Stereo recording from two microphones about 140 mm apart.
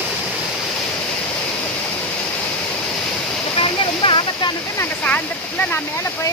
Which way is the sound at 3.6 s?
35° left (ahead or behind).